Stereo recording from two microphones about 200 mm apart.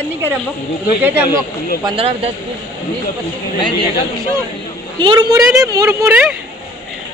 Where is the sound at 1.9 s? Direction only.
25° right (ahead or behind).